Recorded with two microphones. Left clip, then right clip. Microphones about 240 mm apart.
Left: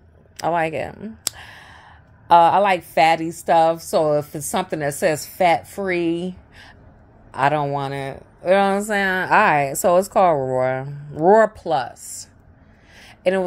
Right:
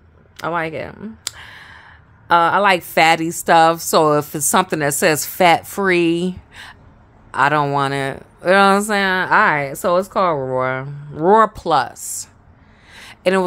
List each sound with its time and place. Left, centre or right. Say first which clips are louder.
0.4 s clicking: left 1 dB; centre
2.6 s speech: right 3 dB; centre
11.5 s speech: right 5 dB; centre
12.9 s a sound: right 3 dB; centre